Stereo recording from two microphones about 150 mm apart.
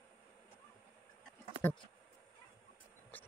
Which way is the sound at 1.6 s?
15° left (ahead or behind).